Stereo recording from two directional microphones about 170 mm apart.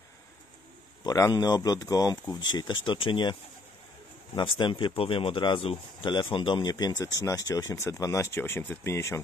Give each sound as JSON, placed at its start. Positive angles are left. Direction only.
{"t": 1.0, "sound": "speech", "side_deg": 20}
{"t": 4.4, "sound": "speech", "side_deg": 25}